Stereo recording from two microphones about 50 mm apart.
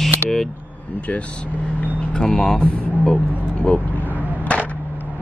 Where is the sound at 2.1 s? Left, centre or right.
Centre.